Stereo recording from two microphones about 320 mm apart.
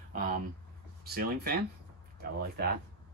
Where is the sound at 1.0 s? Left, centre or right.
Right.